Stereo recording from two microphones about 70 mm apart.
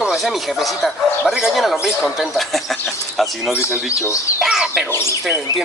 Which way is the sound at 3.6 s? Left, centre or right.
Left.